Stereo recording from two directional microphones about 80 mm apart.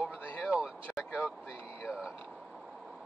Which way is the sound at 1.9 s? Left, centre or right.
Centre.